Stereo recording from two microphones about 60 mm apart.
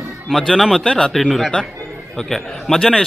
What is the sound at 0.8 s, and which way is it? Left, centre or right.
Speech, centre.